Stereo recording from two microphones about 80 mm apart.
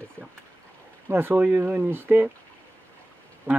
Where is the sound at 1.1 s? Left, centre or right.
Right.